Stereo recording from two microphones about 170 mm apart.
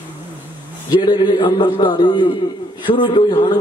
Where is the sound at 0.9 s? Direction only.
25° left (ahead or behind).